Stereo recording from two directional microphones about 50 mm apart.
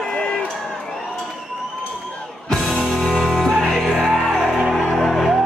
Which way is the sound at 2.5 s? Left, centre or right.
Centre.